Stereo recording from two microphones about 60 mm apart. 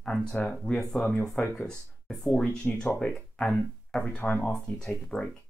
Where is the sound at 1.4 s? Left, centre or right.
Left.